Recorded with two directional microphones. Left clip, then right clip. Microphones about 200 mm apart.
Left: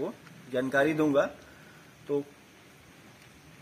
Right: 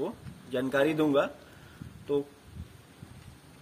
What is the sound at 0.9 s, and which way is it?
Speech, centre (ahead or behind).